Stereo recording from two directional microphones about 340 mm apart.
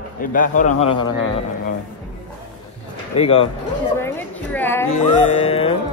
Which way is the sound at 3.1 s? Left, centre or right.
Centre.